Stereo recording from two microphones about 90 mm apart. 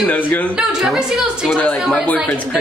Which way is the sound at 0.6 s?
10° right (ahead or behind).